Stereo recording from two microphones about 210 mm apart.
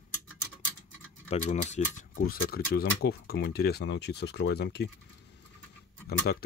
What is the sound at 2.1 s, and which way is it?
Speech, 45° left (ahead or behind).